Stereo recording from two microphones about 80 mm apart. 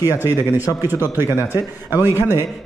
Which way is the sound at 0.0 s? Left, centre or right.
Right.